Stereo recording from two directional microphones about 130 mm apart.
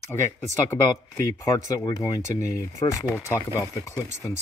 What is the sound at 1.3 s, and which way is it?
Speech, 25° left (ahead or behind).